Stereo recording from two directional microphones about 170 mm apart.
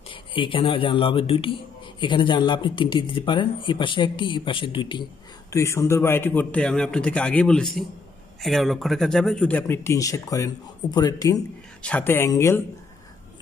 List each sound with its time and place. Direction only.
0.1 s speech: 30° left (ahead or behind)
5.5 s speech: 15° left (ahead or behind)
11.8 s speech: 10° left (ahead or behind)